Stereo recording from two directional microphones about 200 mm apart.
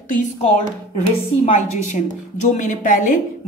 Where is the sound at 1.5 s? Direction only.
35° left (ahead or behind).